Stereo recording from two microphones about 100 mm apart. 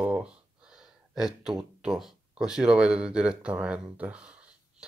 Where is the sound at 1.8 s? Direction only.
5° right (ahead or behind).